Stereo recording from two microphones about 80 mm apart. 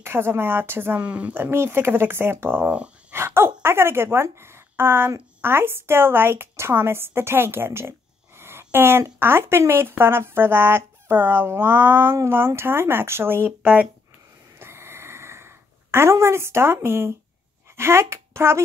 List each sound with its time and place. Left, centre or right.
0.0 s speech: right
1.0 s speech: centre
1.3 s speech: right
2.6 s speech: centre
3.1 s a sound: right
5.4 s a woman's voice: right
13.5 s speech: centre
14.6 s a sound: right
17.7 s speech: right